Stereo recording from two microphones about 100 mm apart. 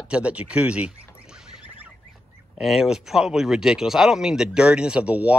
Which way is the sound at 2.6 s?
5° right (ahead or behind).